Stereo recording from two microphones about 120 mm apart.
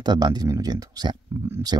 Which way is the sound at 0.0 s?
35° right (ahead or behind).